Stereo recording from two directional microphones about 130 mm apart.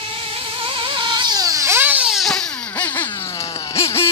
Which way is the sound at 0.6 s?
40° right (ahead or behind).